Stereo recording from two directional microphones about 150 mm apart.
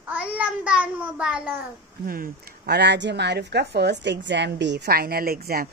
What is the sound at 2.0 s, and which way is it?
A woman's voice, 75° right (ahead or behind).